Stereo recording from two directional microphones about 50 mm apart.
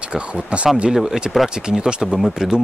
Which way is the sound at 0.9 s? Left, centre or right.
Centre.